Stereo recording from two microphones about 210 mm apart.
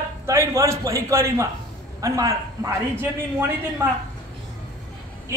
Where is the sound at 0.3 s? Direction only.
15° right (ahead or behind).